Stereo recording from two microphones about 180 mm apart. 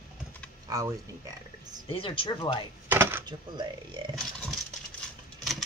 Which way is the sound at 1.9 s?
30° left (ahead or behind).